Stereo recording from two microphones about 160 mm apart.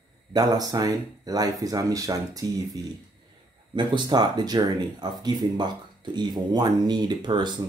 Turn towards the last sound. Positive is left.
turn(degrees=-25)  # may be behind; listen again after turning